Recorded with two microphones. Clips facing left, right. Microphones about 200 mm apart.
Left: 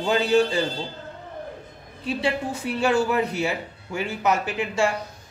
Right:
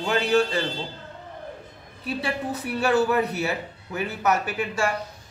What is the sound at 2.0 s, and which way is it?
Speech, 30° left (ahead or behind).